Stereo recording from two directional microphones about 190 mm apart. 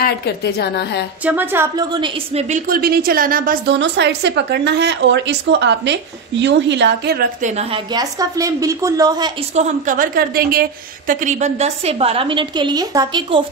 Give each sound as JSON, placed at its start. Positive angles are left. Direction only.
{"t": 0.0, "sound": "a woman's voice", "side_deg": 60}
{"t": 1.2, "sound": "a woman's voice", "side_deg": -10}
{"t": 2.0, "sound": "a woman's voice", "side_deg": -25}
{"t": 2.5, "sound": "a woman's voice", "side_deg": -50}
{"t": 3.7, "sound": "speech", "side_deg": -65}
{"t": 7.4, "sound": "a woman's voice", "side_deg": -35}
{"t": 7.9, "sound": "a woman's voice", "side_deg": -20}
{"t": 9.6, "sound": "a woman's voice", "side_deg": -45}